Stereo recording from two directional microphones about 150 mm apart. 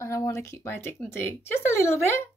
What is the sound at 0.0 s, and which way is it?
A woman's voice, 20° left (ahead or behind).